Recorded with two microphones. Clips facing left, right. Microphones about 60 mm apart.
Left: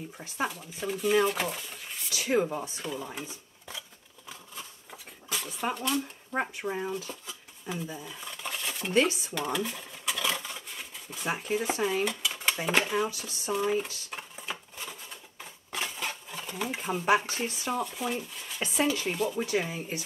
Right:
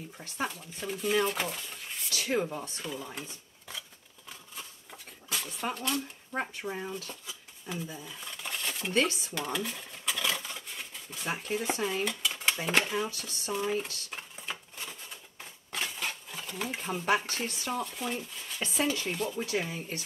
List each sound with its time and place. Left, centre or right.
0.2 s speech: centre
4.3 s a sound: centre
8.9 s dishes: centre